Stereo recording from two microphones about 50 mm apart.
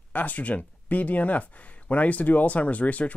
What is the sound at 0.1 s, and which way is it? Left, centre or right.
Speech, left.